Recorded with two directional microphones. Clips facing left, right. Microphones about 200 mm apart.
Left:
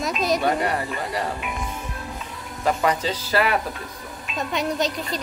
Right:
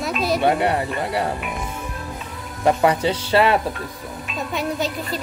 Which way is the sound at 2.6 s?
25° right (ahead or behind).